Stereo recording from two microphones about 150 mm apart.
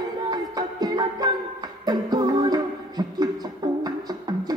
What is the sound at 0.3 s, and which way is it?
Music, 25° right (ahead or behind).